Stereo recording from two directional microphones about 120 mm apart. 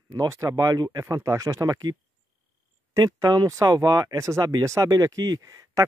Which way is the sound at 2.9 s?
30° right (ahead or behind).